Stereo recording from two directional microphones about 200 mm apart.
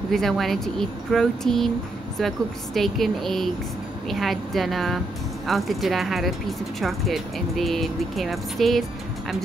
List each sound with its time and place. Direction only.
0.1 s speech: centre (ahead or behind)